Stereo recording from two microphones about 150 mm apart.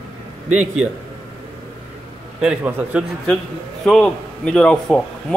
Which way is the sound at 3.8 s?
5° left (ahead or behind).